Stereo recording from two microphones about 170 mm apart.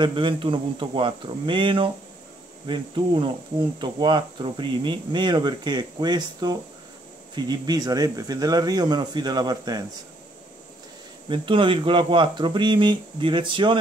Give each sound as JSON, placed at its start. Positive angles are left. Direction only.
{"t": 0.0, "sound": "speech", "side_deg": -30}
{"t": 11.2, "sound": "speech", "side_deg": -30}